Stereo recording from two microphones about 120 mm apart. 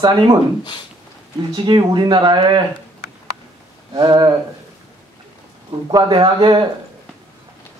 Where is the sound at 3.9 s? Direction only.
35° right (ahead or behind).